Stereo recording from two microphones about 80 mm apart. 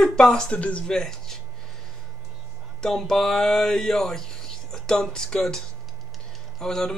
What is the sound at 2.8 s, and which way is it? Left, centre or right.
Speech, centre.